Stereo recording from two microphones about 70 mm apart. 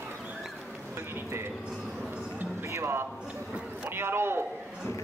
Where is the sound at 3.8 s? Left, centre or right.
Right.